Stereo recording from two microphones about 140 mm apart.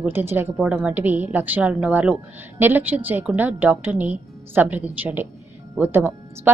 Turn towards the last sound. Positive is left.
turn(degrees=-15)  # may be behind; listen again after turning